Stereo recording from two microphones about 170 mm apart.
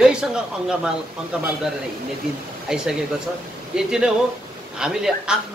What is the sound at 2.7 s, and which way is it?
A man's voice, 5° right (ahead or behind).